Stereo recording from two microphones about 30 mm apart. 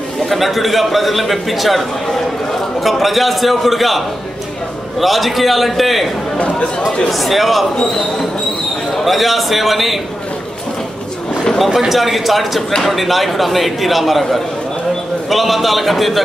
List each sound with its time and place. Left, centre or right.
0.3 s a man's voice: centre
5.0 s a man's voice: centre
7.1 s a man's voice: centre
8.9 s a man's voice: centre
11.9 s a man's voice: centre
15.2 s a man's voice: centre